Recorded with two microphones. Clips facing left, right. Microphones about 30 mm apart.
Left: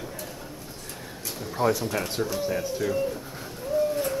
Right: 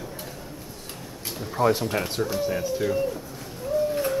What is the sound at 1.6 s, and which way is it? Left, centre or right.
Speech, left.